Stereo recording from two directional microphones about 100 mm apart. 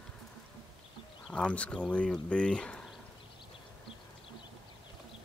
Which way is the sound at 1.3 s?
10° left (ahead or behind).